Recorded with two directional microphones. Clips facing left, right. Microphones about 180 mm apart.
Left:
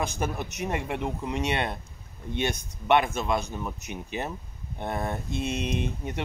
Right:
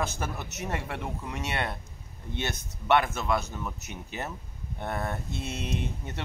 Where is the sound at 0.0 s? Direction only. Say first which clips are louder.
Left 3 dB; 15° left (ahead or behind).